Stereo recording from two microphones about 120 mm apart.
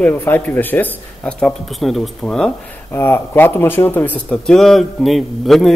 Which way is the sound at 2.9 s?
20° left (ahead or behind).